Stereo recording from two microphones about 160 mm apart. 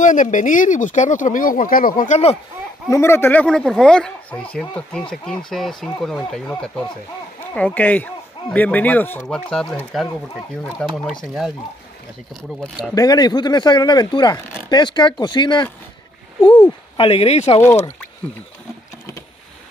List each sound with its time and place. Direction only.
0.0 s speech: 55° left (ahead or behind)
2.9 s speech: 15° left (ahead or behind)
3.4 s speech: 5° left (ahead or behind)
12.4 s speech: centre (ahead or behind)
12.9 s speech: 25° left (ahead or behind)
16.9 s speech: 35° left (ahead or behind)
17.6 s speech: 15° left (ahead or behind)